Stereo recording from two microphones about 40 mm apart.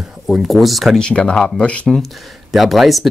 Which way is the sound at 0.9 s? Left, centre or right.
Left.